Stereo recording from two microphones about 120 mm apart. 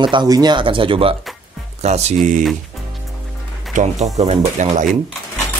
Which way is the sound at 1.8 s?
70° right (ahead or behind).